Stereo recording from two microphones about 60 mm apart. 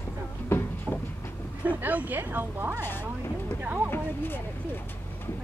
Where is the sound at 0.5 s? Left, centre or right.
Left.